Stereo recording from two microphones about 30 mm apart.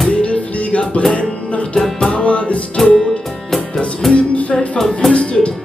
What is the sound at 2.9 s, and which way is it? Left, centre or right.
Music, left.